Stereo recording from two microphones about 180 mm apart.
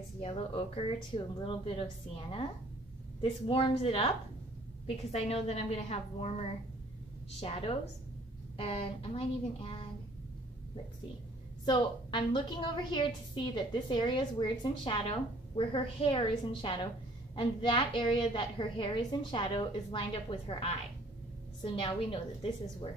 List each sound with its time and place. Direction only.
0.2 s a woman's voice: 35° left (ahead or behind)
11.6 s a woman's voice: 25° left (ahead or behind)